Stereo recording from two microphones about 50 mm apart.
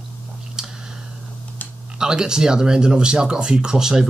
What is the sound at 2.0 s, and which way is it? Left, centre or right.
Speech, centre.